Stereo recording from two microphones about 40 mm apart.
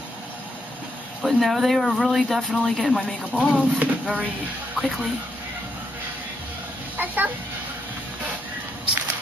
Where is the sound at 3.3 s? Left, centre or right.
Right.